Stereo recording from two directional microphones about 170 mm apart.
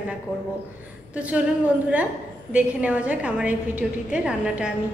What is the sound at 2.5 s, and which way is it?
A woman's voice, 10° right (ahead or behind).